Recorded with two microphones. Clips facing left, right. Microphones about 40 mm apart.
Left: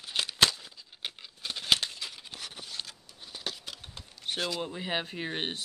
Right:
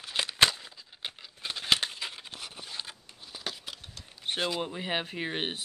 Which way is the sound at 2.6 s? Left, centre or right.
Centre.